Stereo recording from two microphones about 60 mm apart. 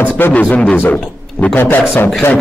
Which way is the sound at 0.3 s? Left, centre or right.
Left.